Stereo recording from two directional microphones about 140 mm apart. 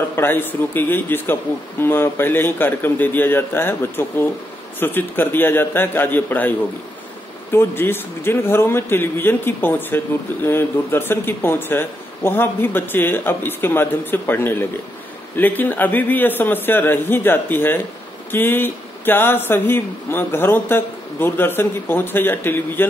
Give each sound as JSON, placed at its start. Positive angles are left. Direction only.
{"t": 0.1, "sound": "a man's voice", "side_deg": 15}
{"t": 7.5, "sound": "a man's voice", "side_deg": 15}